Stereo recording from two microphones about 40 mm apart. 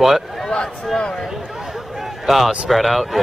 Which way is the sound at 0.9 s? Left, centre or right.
Centre.